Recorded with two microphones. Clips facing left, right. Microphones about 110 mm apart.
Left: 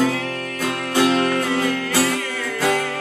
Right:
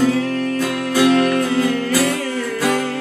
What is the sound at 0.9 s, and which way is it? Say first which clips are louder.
Music: right 3 dB; 25° left (ahead or behind).